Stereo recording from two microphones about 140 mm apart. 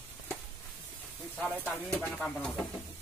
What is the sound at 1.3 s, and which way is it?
Speech, 5° right (ahead or behind).